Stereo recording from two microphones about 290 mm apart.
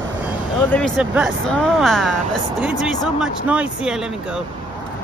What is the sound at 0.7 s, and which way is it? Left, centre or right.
Speech, centre.